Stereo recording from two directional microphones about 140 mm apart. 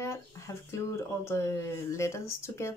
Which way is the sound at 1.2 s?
20° left (ahead or behind).